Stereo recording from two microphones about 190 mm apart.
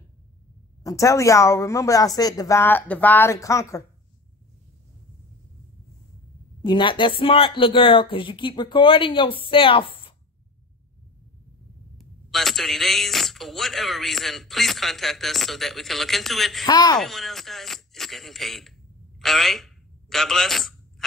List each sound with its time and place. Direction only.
0.8 s speech: 15° left (ahead or behind)
6.6 s speech: 25° left (ahead or behind)
12.0 s a man's voice: centre (ahead or behind)
16.6 s speech: 20° left (ahead or behind)
17.0 s a sound: centre (ahead or behind)